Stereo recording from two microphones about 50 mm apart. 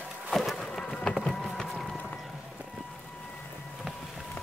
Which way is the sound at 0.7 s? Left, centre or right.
Centre.